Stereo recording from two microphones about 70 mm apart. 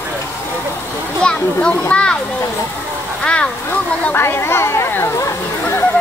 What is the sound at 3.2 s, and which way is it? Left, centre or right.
Speech, centre.